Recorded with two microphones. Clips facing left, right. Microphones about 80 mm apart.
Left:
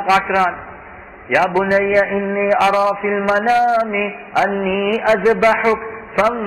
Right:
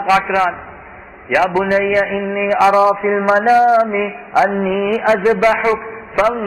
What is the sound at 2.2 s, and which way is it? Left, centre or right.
Music, centre.